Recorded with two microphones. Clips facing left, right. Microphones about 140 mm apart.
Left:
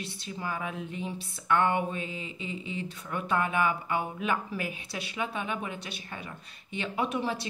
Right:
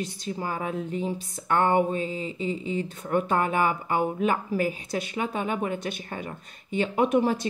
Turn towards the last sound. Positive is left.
turn(degrees=-45)  # may be behind; listen again after turning